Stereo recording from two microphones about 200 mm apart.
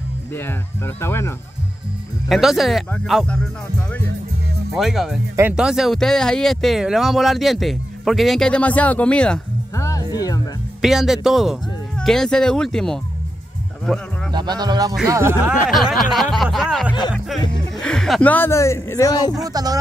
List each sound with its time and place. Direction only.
0.3 s speech: 10° left (ahead or behind)
2.2 s speech: centre (ahead or behind)
4.7 s speech: centre (ahead or behind)
9.8 s music: 20° left (ahead or behind)
10.8 s speech: centre (ahead or behind)
14.3 s speech: 20° right (ahead or behind)
15.9 s speech: centre (ahead or behind); by 19.3 s 20° left (ahead or behind)
19.3 s speech: 20° right (ahead or behind)